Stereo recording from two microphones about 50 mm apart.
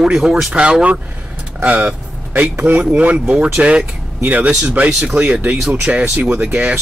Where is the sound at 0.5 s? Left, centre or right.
Right.